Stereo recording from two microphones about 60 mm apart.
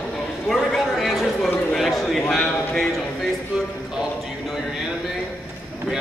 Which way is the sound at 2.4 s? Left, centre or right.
Centre.